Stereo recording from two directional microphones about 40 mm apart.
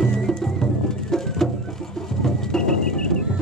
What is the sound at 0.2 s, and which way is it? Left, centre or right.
Music, centre.